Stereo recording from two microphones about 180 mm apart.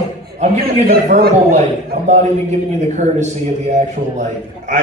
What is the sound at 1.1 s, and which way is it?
Speech, 40° right (ahead or behind).